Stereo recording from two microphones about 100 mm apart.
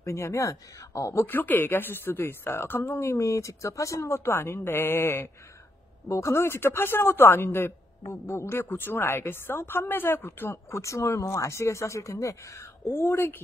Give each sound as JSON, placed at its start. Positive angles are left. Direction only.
{"t": 0.0, "sound": "speech", "side_deg": 30}